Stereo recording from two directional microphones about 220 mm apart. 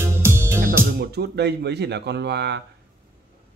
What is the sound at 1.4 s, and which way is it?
Speech, 50° right (ahead or behind).